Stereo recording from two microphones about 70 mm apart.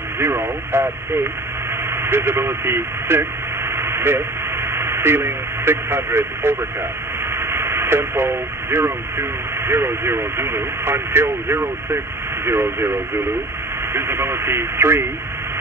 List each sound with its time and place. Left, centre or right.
0.2 s speech: right
3.7 s radio: right
4.7 s speech: right
7.3 s radio: right
9.7 s speech: right